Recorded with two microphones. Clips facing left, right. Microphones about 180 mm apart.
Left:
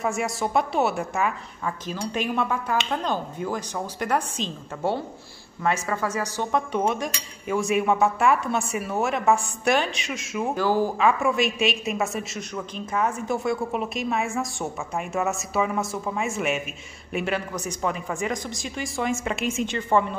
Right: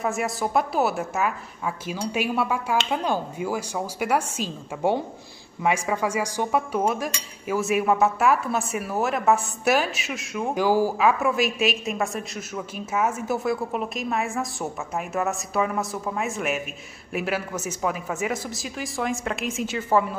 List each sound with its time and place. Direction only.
0.0 s a woman's voice: centre (ahead or behind)
10.5 s a woman's voice: 10° right (ahead or behind)